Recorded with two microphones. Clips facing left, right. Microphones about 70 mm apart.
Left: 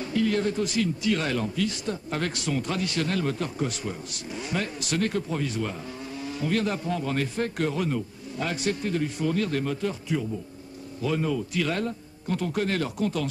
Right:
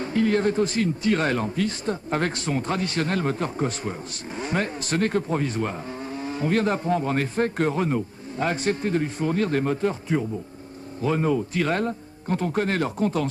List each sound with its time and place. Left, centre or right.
0.0 s a man's voice: right